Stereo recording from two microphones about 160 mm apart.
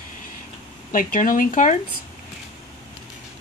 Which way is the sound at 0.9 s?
60° left (ahead or behind).